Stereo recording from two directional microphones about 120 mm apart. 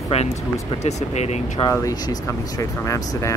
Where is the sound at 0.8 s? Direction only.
65° left (ahead or behind).